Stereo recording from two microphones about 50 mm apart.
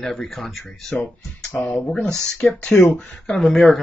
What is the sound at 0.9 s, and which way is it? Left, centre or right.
Speech, left.